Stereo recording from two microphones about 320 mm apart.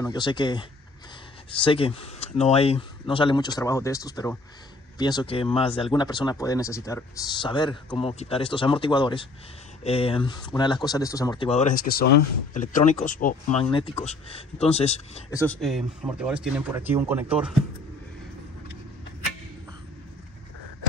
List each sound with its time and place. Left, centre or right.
0.0 s speech: centre
15.3 s speech: centre